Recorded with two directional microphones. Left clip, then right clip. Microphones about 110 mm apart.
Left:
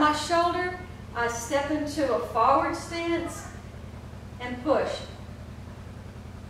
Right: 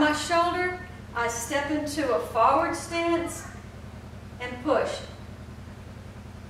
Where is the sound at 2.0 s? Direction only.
20° right (ahead or behind).